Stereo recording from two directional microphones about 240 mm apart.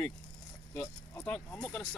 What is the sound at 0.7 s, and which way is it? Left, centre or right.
Speech, centre.